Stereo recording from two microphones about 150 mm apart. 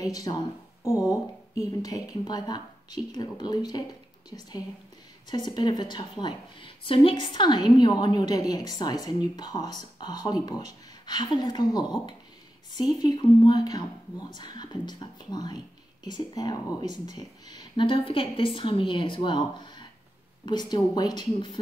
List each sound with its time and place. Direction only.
0.0 s a woman's voice: 25° left (ahead or behind)